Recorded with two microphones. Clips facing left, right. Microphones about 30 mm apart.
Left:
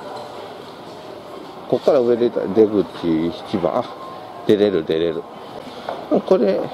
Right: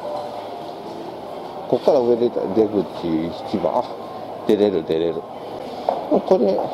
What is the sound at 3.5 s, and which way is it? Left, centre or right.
Speech, left.